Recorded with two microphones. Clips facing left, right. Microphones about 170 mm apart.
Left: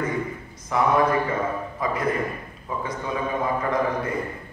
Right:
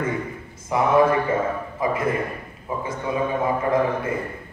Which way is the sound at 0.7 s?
25° right (ahead or behind).